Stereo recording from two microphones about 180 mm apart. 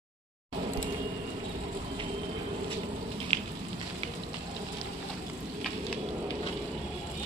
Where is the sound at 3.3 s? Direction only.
30° right (ahead or behind).